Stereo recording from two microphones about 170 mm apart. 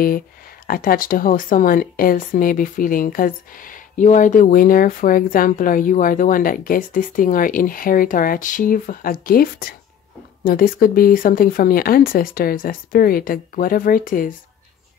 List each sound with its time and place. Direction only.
0.7 s a woman's voice: 55° left (ahead or behind)